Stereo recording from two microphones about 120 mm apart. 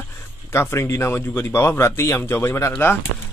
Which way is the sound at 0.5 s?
20° left (ahead or behind).